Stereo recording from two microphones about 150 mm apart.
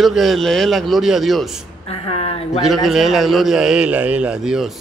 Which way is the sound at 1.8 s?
40° left (ahead or behind).